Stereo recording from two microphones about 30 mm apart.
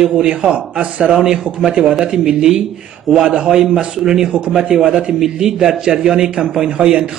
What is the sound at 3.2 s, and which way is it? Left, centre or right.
Speech, right.